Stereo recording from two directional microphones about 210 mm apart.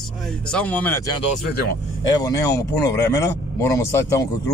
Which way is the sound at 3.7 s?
15° left (ahead or behind).